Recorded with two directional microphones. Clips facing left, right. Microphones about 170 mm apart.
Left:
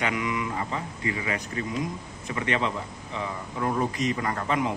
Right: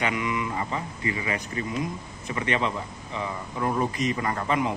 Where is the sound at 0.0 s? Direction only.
Centre (ahead or behind).